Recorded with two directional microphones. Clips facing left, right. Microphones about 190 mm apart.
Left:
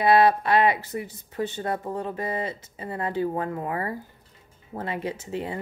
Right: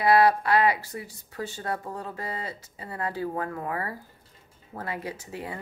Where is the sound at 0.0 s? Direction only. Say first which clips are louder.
Left 2 dB; 25° left (ahead or behind).